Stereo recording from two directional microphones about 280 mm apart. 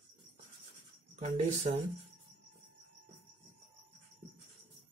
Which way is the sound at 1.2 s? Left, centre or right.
Right.